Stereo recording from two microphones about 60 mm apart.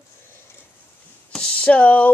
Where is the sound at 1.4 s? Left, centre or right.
Centre.